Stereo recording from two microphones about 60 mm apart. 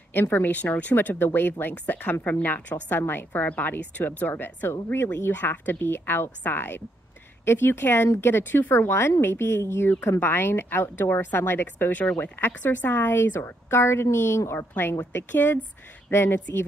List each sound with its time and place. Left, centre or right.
0.1 s speech: left
12.4 s speech: left
14.7 s speech: left